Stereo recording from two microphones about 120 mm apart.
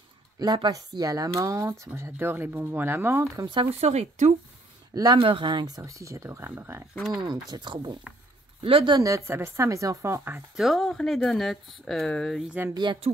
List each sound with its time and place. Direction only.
0.4 s speech: 35° right (ahead or behind)
3.8 s speech: 65° right (ahead or behind)
4.9 s speech: 30° right (ahead or behind)
5.2 s speech: 45° right (ahead or behind); by 6.8 s 20° right (ahead or behind)
7.1 s speech: 35° right (ahead or behind)
9.0 s speech: 25° right (ahead or behind)
10.5 s speech: centre (ahead or behind)
12.4 s speech: 15° right (ahead or behind)
12.7 s speech: 40° right (ahead or behind)